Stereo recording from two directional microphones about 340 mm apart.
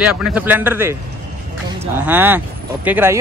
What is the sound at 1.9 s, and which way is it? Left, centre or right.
Speech, centre.